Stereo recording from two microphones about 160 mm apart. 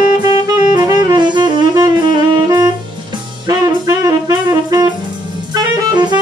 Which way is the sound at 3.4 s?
20° right (ahead or behind).